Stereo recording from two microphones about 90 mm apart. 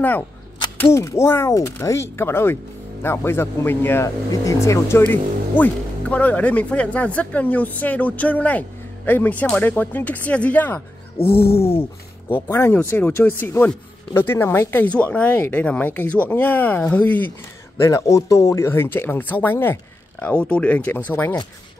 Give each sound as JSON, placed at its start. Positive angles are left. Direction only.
{"t": 0.9, "sound": "speech", "side_deg": 30}
{"t": 4.3, "sound": "speech", "side_deg": 35}
{"t": 17.7, "sound": "speech", "side_deg": 35}